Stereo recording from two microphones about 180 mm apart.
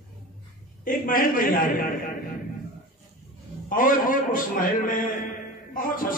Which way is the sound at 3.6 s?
50° left (ahead or behind).